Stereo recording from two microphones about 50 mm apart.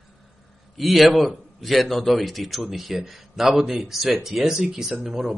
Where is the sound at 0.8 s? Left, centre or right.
Centre.